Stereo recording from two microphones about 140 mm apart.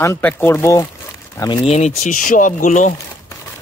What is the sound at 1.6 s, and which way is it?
Speech, 50° left (ahead or behind).